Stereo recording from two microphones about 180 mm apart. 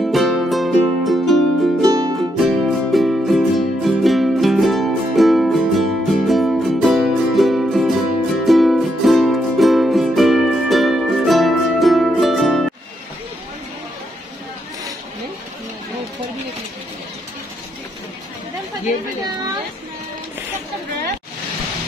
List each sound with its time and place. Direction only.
0.0 s music: centre (ahead or behind)
1.9 s music: 20° right (ahead or behind)
2.4 s music: centre (ahead or behind)